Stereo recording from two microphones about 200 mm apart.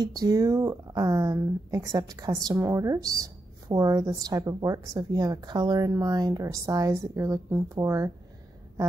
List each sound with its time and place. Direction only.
0.0 s speech: 20° right (ahead or behind)